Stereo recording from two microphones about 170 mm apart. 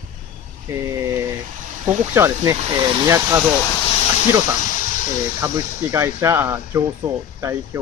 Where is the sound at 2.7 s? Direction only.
25° right (ahead or behind).